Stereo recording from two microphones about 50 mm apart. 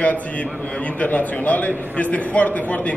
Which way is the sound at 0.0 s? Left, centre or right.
Left.